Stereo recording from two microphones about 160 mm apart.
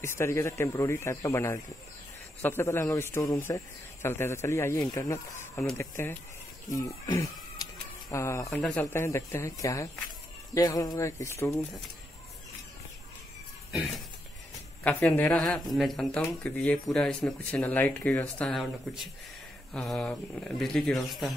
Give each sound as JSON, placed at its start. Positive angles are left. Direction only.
{"t": 0.0, "sound": "a man's voice", "side_deg": 15}
{"t": 13.7, "sound": "a sound", "side_deg": 0}
{"t": 14.8, "sound": "speech", "side_deg": 10}